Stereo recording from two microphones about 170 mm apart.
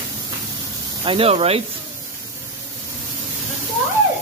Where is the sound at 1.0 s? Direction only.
35° right (ahead or behind).